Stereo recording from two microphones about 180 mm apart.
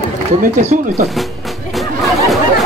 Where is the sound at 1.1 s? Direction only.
Centre (ahead or behind).